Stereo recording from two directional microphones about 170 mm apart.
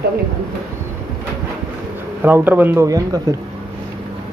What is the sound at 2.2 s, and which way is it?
Speech, 10° right (ahead or behind).